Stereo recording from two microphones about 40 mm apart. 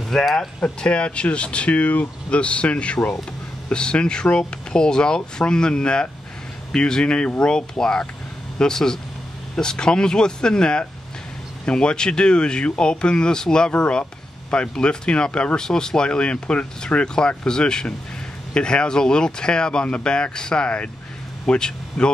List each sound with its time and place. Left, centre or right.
0.1 s speech: centre
0.7 s speech: left